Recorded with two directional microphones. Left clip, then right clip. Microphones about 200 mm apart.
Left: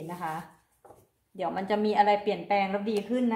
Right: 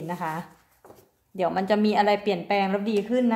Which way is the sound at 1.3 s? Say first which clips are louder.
Right 6 dB; 40° right (ahead or behind).